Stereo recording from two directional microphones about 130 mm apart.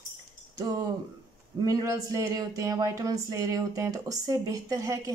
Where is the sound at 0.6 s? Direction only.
30° right (ahead or behind).